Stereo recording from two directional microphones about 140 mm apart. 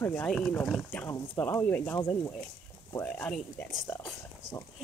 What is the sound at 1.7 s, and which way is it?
Speech, 15° left (ahead or behind).